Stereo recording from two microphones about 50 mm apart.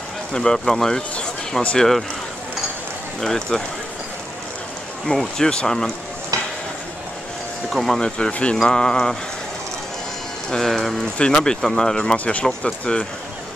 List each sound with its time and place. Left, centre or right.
0.3 s speech: centre
3.2 s speech: centre
5.0 s speech: centre
7.7 s speech: centre
8.0 s speech: left
10.5 s speech: centre
11.0 s speech: centre